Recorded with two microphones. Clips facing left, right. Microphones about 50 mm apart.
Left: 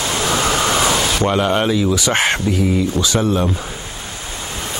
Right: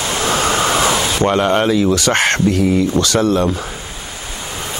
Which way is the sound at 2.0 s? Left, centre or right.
Centre.